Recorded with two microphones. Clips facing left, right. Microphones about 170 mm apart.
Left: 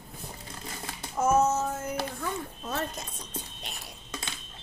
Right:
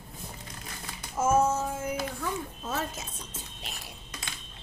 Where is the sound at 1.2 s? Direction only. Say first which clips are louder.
Left 1 dB; 5° right (ahead or behind).